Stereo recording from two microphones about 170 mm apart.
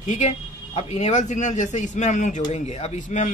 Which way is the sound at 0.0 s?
45° left (ahead or behind).